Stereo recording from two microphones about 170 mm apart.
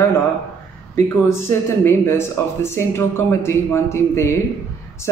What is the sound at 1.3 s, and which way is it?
Speech, 15° left (ahead or behind).